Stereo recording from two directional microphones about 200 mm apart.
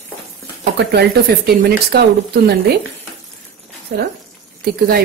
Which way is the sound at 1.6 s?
50° right (ahead or behind).